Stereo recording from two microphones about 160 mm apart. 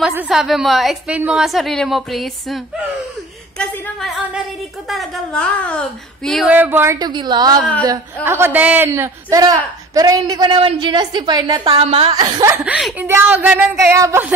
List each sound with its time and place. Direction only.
0.1 s a woman's voice: 5° right (ahead or behind)
6.5 s a woman's voice: 10° right (ahead or behind); by 12.1 s 35° right (ahead or behind)
12.1 s a woman's voice: 25° right (ahead or behind)
12.6 s speech: 5° right (ahead or behind)